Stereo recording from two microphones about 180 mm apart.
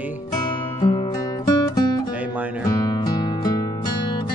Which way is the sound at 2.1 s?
10° right (ahead or behind).